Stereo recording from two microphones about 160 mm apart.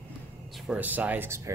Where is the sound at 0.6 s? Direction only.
10° right (ahead or behind).